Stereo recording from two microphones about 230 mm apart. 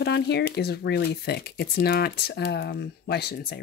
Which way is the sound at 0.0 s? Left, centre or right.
Left.